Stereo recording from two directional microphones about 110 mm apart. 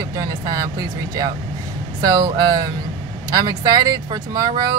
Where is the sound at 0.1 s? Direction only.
30° right (ahead or behind).